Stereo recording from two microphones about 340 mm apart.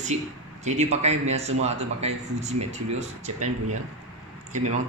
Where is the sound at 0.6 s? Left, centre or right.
Centre.